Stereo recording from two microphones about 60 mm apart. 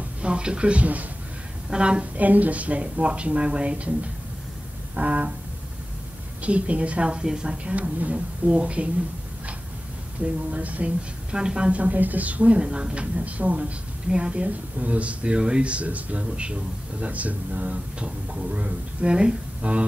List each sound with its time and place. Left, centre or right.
0.2 s speech: centre
6.4 s speech: right
10.2 s speech: right